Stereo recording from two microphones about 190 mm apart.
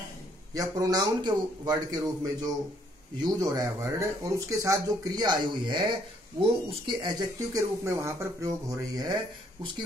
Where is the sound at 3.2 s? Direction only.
20° right (ahead or behind).